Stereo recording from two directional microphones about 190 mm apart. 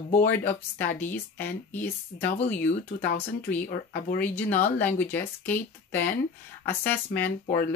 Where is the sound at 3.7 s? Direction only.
50° left (ahead or behind).